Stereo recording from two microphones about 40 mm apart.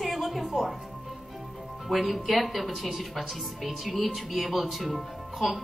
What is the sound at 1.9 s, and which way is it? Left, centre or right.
Speech, centre.